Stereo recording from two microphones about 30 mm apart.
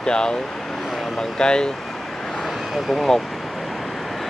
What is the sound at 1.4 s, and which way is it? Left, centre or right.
Speech, left.